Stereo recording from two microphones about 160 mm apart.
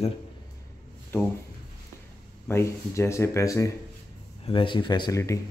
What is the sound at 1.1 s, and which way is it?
Speech, 15° left (ahead or behind).